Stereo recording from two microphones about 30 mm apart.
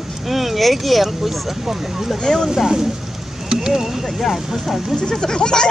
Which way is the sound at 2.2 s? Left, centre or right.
Left.